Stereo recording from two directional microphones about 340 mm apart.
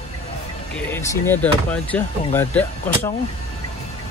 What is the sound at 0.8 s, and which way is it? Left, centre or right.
Speech, centre.